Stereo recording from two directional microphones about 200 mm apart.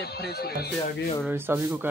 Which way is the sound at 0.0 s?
50° left (ahead or behind).